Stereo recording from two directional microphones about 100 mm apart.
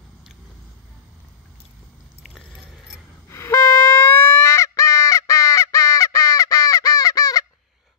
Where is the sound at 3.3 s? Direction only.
25° left (ahead or behind).